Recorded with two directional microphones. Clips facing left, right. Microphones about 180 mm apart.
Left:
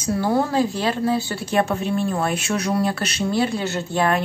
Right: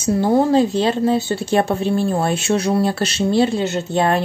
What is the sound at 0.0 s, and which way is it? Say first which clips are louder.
Speech: right 5 dB; 25° right (ahead or behind).